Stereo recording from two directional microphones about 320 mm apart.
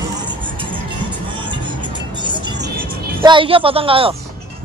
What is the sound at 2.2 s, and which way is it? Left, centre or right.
Music, centre.